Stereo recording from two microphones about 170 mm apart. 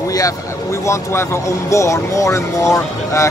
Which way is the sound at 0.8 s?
15° left (ahead or behind).